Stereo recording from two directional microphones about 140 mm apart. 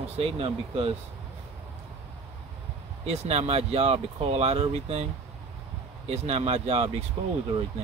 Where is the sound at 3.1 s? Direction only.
45° right (ahead or behind).